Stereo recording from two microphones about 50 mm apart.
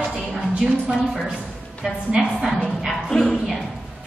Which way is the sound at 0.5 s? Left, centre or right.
Centre.